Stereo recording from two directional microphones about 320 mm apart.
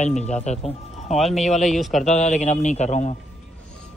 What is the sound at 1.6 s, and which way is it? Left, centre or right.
Speech, centre.